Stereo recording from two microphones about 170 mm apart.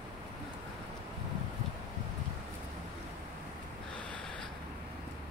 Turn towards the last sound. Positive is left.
turn(degrees=5)  # may be behind; listen again after turning